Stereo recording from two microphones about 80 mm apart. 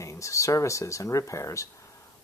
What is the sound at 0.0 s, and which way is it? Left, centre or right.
Speech, left.